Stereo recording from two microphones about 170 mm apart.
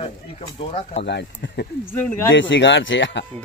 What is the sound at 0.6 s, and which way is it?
Speech, 35° left (ahead or behind).